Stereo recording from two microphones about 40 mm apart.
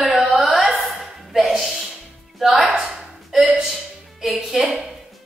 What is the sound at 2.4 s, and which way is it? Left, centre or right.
Music, centre.